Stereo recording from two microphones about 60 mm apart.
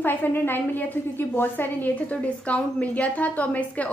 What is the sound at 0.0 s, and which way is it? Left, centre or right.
A woman's voice, left.